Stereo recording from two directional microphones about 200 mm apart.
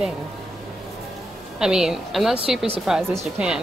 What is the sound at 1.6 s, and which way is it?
Speech, 5° right (ahead or behind).